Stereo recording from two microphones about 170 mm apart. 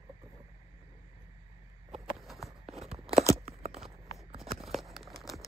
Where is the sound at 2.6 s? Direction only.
35° right (ahead or behind).